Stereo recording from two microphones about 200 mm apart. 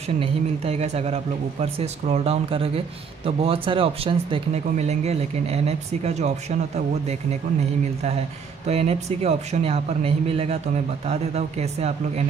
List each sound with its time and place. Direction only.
0.2 s speech: 30° right (ahead or behind)
8.6 s speech: 30° right (ahead or behind)